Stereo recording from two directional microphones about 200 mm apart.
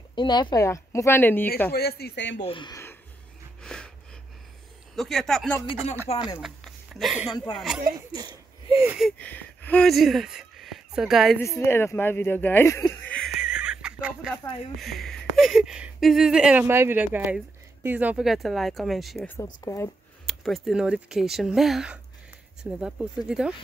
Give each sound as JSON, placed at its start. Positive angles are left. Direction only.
{"t": 0.1, "sound": "speech", "side_deg": 20}
{"t": 1.7, "sound": "speech", "side_deg": 50}
{"t": 2.4, "sound": "speech", "side_deg": 25}
{"t": 3.6, "sound": "a sound", "side_deg": 5}
{"t": 4.9, "sound": "speech", "side_deg": 0}
{"t": 6.0, "sound": "speech", "side_deg": 20}
{"t": 6.4, "sound": "a sound", "side_deg": 0}
{"t": 7.5, "sound": "speech", "side_deg": 0}
{"t": 8.6, "sound": "a sound", "side_deg": -15}
{"t": 8.9, "sound": "speech", "side_deg": 5}
{"t": 11.3, "sound": "speech", "side_deg": 15}
{"t": 19.3, "sound": "speech", "side_deg": 15}
{"t": 20.2, "sound": "speech", "side_deg": 0}